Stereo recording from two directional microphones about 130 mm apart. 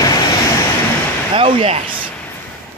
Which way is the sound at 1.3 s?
45° right (ahead or behind).